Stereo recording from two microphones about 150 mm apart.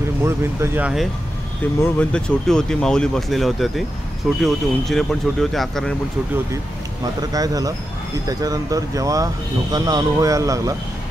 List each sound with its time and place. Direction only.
0.2 s speech: 15° right (ahead or behind)
1.8 s speech: 10° left (ahead or behind)
7.2 s speech: 25° right (ahead or behind)